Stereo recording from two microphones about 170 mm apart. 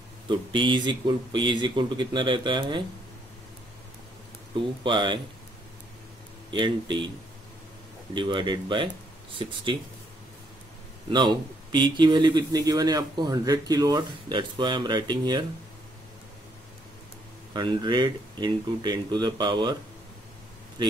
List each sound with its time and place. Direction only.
0.3 s speech: 30° right (ahead or behind)
4.6 s speech: 30° right (ahead or behind)
6.5 s speech: 30° right (ahead or behind)
8.1 s speech: 30° right (ahead or behind)
11.1 s speech: 25° right (ahead or behind)
17.6 s speech: 25° right (ahead or behind)